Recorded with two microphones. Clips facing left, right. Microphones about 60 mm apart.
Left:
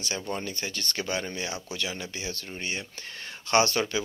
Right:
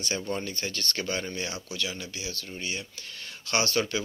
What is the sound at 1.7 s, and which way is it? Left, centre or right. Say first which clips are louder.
Speech: left 1 dB; left.